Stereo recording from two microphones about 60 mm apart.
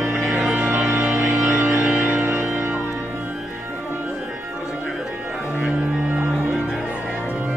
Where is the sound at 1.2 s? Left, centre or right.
Right.